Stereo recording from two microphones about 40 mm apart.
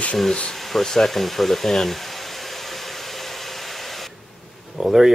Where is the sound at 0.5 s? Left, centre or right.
Centre.